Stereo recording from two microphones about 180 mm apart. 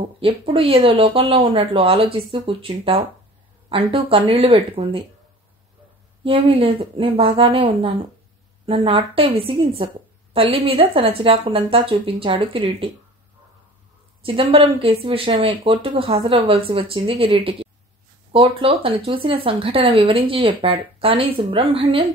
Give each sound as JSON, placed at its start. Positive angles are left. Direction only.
{"t": 0.2, "sound": "a woman's voice", "side_deg": -30}
{"t": 6.2, "sound": "a woman's voice", "side_deg": -30}
{"t": 14.2, "sound": "a woman's voice", "side_deg": -30}